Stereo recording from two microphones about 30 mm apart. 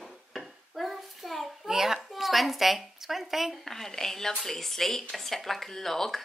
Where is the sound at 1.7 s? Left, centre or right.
Centre.